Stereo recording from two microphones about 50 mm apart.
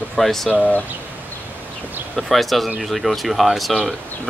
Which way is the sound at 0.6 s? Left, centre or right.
Left.